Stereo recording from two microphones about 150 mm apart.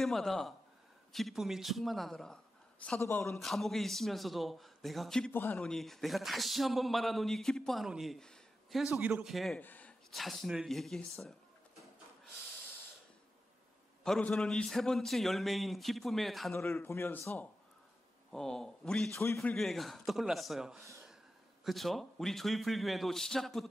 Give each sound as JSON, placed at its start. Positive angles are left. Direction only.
{"t": 0.0, "sound": "a man's voice", "side_deg": 0}
{"t": 3.3, "sound": "a man's voice", "side_deg": 0}
{"t": 5.3, "sound": "a man's voice", "side_deg": 10}
{"t": 9.6, "sound": "a man's voice", "side_deg": 10}
{"t": 14.0, "sound": "a man's voice", "side_deg": 5}
{"t": 16.5, "sound": "a man's voice", "side_deg": 15}
{"t": 19.1, "sound": "a man's voice", "side_deg": 15}
{"t": 19.5, "sound": "a man's voice", "side_deg": 0}